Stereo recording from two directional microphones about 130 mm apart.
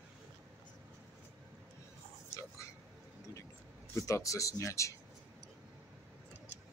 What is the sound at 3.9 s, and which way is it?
Speech, 25° left (ahead or behind).